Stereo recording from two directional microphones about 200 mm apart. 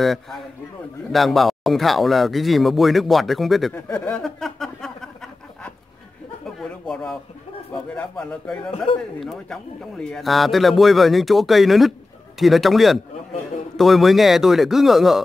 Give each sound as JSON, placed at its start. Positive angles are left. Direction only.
{"t": 0.0, "sound": "a man's voice", "side_deg": 0}
{"t": 3.7, "sound": "a sound", "side_deg": 10}
{"t": 7.7, "sound": "speech", "side_deg": 5}
{"t": 8.9, "sound": "speech", "side_deg": 25}
{"t": 9.2, "sound": "a man's voice", "side_deg": 0}